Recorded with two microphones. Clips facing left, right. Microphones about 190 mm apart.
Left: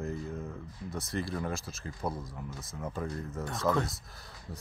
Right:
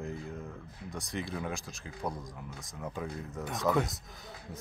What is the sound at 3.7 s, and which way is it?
Speech, 10° right (ahead or behind).